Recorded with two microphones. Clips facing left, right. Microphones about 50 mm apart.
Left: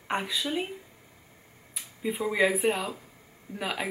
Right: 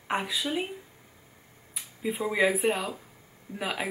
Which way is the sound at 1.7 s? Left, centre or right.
Centre.